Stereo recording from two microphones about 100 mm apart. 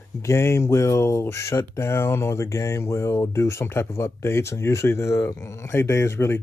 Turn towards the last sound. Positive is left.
turn(degrees=25)  # may be behind; listen again after turning